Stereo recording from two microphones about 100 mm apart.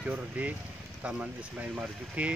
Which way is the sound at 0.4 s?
15° right (ahead or behind).